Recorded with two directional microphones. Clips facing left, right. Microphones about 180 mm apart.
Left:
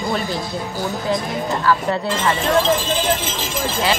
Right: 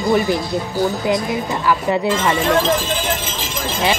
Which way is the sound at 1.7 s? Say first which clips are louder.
Right 2 dB; 15° right (ahead or behind).